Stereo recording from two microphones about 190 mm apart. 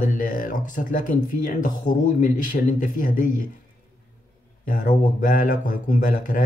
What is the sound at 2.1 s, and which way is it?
Speech, 45° left (ahead or behind).